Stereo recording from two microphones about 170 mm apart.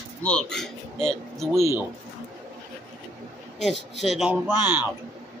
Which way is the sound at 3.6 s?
Centre (ahead or behind).